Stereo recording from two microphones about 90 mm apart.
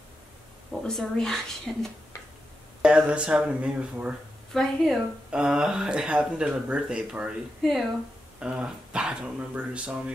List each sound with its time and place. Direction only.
0.8 s speech: 5° left (ahead or behind)
2.8 s speech: 10° right (ahead or behind)
4.5 s a woman's voice: 5° left (ahead or behind)
5.3 s speech: 10° right (ahead or behind)
8.4 s speech: 10° right (ahead or behind)